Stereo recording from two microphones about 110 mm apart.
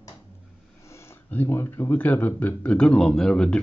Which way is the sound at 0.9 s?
25° left (ahead or behind).